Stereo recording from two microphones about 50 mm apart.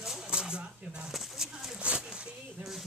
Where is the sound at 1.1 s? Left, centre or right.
Centre.